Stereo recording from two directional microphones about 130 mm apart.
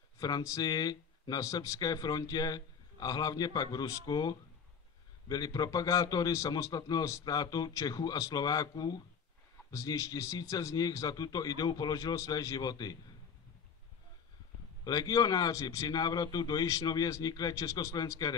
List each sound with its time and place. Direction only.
0.2 s a man's voice: 25° left (ahead or behind)
14.9 s a man's voice: 30° left (ahead or behind)